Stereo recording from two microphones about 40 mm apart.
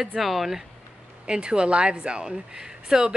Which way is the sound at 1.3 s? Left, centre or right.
Right.